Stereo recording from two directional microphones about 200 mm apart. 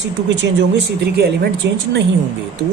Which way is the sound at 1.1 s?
55° right (ahead or behind).